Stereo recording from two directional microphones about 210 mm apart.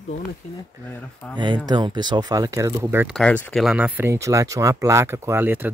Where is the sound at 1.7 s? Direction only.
20° right (ahead or behind).